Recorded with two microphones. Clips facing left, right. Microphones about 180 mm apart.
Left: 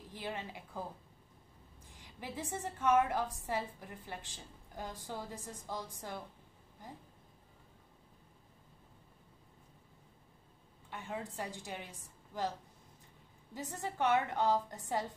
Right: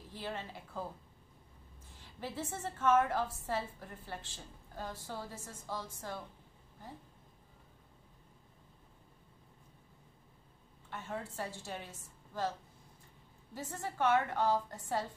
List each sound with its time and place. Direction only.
0.1 s a woman's voice: 15° left (ahead or behind)
2.0 s a woman's voice: 15° left (ahead or behind)
10.9 s a woman's voice: 15° left (ahead or behind)
13.6 s a woman's voice: 20° left (ahead or behind)